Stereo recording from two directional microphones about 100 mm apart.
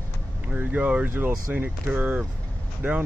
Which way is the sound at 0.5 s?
15° right (ahead or behind).